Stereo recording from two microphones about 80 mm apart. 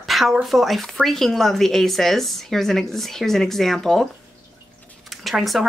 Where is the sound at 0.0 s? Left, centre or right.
Centre.